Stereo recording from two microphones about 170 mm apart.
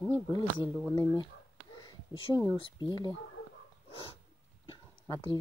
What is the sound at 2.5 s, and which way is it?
Speech, 25° left (ahead or behind).